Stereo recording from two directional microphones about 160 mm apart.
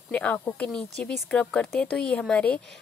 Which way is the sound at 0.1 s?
10° left (ahead or behind).